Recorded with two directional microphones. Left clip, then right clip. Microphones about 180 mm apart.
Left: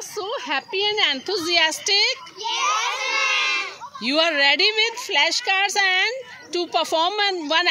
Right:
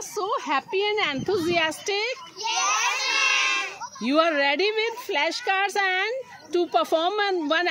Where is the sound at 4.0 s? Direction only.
45° right (ahead or behind).